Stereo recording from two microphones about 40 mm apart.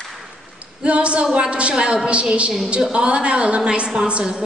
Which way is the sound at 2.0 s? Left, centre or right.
Right.